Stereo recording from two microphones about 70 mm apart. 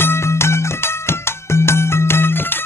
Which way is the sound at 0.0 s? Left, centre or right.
Left.